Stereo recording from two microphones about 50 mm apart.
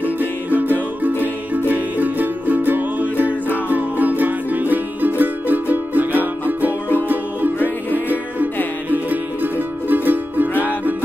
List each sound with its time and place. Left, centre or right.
0.0 s music: right